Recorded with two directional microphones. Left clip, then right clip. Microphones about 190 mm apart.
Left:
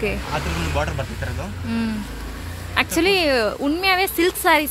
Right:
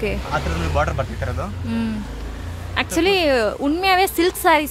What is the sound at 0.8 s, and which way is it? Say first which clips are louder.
Speech: right 5 dB; 25° right (ahead or behind).